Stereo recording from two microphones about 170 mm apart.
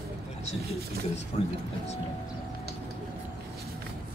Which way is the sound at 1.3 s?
40° left (ahead or behind).